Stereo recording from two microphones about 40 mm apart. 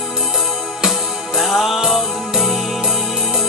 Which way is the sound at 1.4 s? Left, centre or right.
Centre.